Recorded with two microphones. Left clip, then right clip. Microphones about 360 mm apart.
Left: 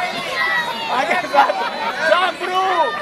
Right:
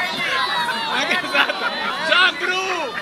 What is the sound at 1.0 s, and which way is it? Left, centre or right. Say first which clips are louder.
Chatter: left 5 dB; left.